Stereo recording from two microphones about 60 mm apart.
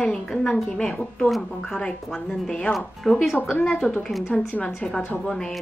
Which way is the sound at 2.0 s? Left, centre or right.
Centre.